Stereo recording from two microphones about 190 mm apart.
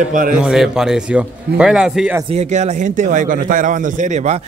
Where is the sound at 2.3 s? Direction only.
40° right (ahead or behind).